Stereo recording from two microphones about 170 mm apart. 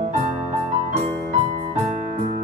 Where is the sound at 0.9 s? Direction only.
40° right (ahead or behind).